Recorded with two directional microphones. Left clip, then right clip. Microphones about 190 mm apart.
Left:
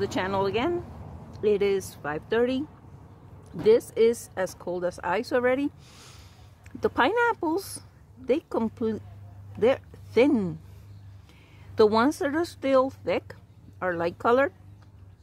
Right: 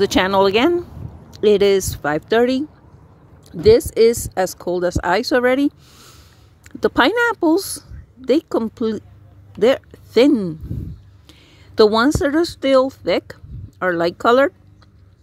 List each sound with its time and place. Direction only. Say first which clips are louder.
0.0 s speech: right 12 dB; 35° right (ahead or behind)
3.6 s speech: right 8 dB; 20° right (ahead or behind)
6.8 s speech: right 8 dB; 25° right (ahead or behind)
9.6 s a sound: right 8 dB; 20° right (ahead or behind)
12.1 s speech: right 10 dB; 20° right (ahead or behind)